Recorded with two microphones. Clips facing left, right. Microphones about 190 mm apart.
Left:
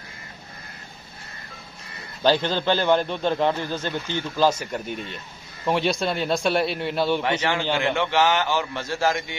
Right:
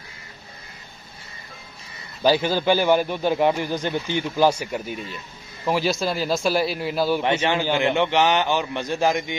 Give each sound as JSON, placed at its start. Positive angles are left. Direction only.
{"t": 2.2, "sound": "a man's voice", "side_deg": -10}
{"t": 7.7, "sound": "a man's voice", "side_deg": -20}